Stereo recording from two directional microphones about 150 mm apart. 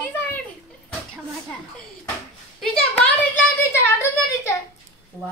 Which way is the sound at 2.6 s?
10° left (ahead or behind).